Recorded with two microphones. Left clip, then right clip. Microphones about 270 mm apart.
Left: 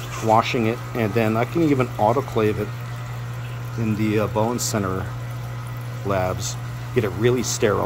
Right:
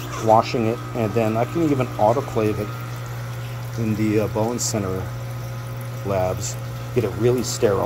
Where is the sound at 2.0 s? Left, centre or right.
Left.